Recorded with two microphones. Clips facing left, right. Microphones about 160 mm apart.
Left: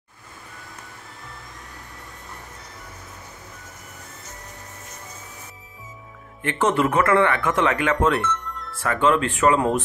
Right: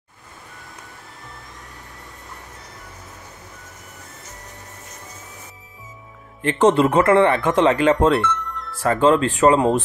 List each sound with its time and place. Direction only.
6.4 s speech: 30° right (ahead or behind)
8.5 s music: centre (ahead or behind)
8.8 s speech: 35° right (ahead or behind)